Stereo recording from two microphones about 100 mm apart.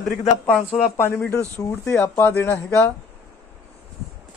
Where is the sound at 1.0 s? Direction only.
25° left (ahead or behind).